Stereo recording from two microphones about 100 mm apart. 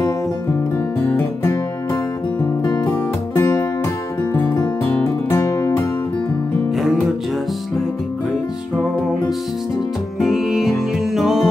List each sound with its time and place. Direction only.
1.0 s music: 25° left (ahead or behind)
2.6 s music: 40° left (ahead or behind)
3.3 s music: 30° left (ahead or behind)
6.7 s music: centre (ahead or behind)
10.1 s music: 5° right (ahead or behind)